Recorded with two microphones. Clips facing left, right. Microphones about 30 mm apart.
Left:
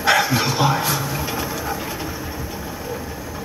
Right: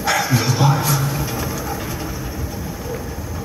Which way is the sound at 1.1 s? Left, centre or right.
Centre.